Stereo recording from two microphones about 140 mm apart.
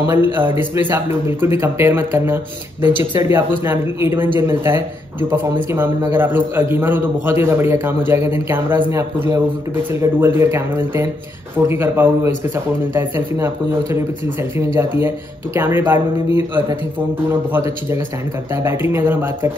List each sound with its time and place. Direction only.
0.0 s a man's voice: 15° right (ahead or behind)